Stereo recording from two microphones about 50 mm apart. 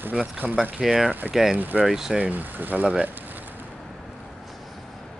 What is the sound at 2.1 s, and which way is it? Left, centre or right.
Speech, right.